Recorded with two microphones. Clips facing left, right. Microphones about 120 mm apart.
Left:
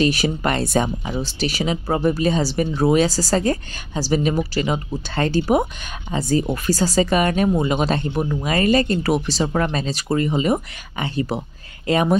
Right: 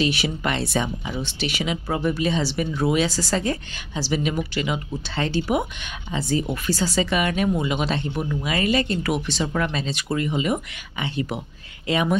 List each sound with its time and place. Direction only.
0.0 s speech: 40° left (ahead or behind)